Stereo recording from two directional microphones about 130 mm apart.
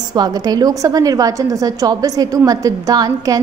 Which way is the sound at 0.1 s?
30° right (ahead or behind).